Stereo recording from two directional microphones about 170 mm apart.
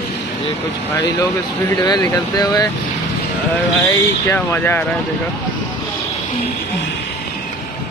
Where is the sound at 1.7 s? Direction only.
20° left (ahead or behind).